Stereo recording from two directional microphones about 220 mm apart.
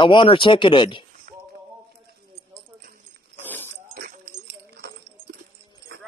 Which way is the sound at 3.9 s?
45° right (ahead or behind).